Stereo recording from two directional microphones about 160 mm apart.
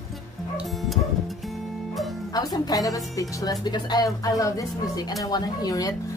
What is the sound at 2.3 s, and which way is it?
A woman's voice, 25° left (ahead or behind).